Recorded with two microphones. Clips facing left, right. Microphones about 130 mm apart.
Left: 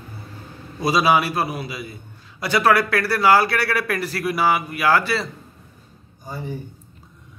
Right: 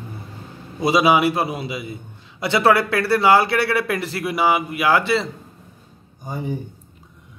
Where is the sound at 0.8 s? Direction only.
20° right (ahead or behind).